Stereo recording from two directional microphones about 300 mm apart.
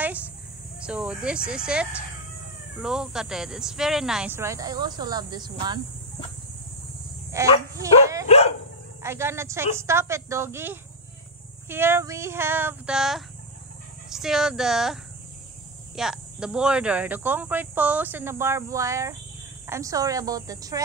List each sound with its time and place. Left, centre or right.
0.8 s speech: centre
7.3 s a woman's voice: centre
7.7 s dog: centre
8.3 s dog: left
9.0 s a woman's voice: centre
16.0 s a woman's voice: centre